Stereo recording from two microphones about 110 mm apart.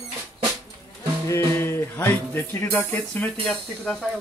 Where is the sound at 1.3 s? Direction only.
25° left (ahead or behind).